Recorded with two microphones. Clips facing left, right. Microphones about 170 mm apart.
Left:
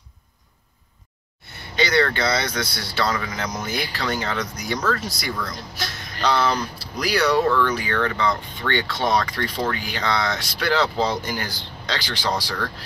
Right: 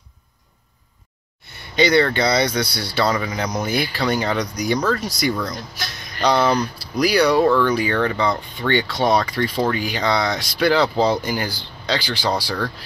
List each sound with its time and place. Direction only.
1.8 s speech: 20° right (ahead or behind)